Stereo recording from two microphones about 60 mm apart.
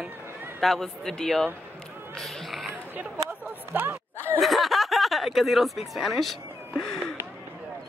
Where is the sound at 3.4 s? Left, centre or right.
Right.